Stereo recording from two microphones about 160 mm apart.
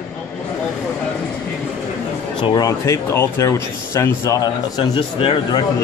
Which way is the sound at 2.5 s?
20° left (ahead or behind).